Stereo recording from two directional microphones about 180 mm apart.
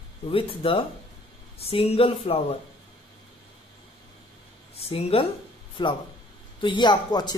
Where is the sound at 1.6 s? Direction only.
30° left (ahead or behind).